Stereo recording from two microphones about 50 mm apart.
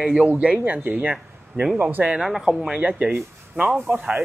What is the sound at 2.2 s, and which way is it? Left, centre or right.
Speech, centre.